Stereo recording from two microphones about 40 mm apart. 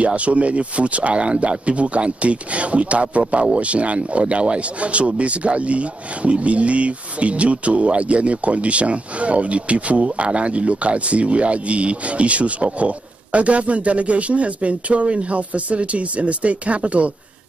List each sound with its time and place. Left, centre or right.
0.0 s speech: right